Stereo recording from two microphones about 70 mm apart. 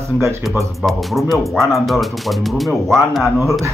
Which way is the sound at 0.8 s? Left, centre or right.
Centre.